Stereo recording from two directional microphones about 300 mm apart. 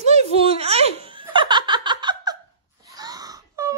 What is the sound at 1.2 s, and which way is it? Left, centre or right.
Laughter, centre.